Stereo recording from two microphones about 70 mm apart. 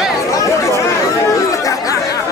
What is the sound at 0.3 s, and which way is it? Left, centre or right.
Chatter, left.